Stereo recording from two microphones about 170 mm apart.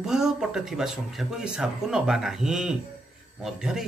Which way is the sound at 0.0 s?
5° right (ahead or behind).